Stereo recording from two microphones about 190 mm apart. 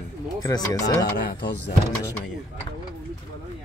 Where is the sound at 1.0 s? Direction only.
55° left (ahead or behind).